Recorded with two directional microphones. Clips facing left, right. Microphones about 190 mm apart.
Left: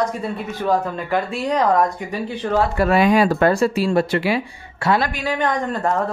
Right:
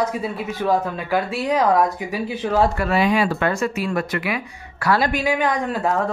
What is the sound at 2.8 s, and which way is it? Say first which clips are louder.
Speech: left 4 dB; 50° left (ahead or behind).